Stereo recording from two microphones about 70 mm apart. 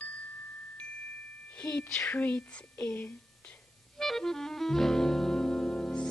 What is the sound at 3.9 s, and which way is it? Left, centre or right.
Music, centre.